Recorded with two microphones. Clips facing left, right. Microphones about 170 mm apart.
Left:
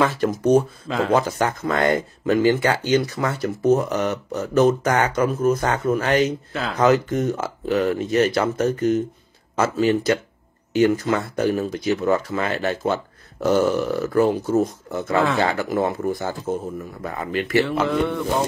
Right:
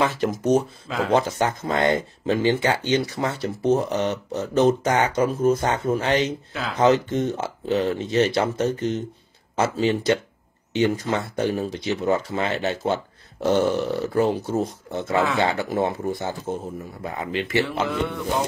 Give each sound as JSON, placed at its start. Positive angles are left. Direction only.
{"t": 0.0, "sound": "speech", "side_deg": -25}
{"t": 0.8, "sound": "mantra", "side_deg": 0}
{"t": 1.1, "sound": "speech", "side_deg": -25}
{"t": 6.5, "sound": "mantra", "side_deg": 0}
{"t": 6.8, "sound": "speech", "side_deg": -25}
{"t": 17.6, "sound": "mantra", "side_deg": 0}